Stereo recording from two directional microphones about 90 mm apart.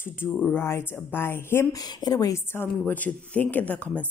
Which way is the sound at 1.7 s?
50° left (ahead or behind).